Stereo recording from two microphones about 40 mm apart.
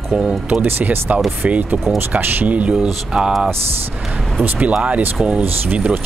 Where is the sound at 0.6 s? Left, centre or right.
Right.